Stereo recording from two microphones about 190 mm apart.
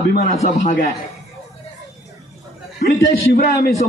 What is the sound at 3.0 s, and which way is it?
Speech, 45° left (ahead or behind).